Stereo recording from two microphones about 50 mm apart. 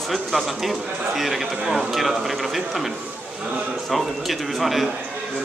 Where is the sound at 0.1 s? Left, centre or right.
Centre.